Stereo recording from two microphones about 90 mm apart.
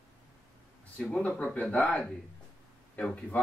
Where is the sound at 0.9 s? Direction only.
10° left (ahead or behind).